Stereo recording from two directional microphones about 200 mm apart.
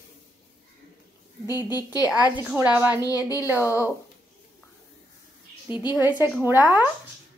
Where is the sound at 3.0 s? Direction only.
15° left (ahead or behind).